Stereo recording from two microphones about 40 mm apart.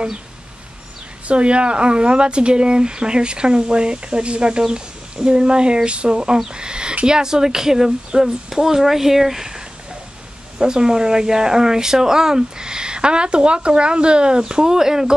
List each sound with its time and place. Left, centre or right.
1.2 s speech: right; by 9.6 s centre
10.6 s speech: centre